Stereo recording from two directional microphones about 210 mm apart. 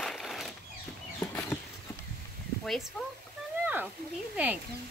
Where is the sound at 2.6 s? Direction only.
Centre (ahead or behind).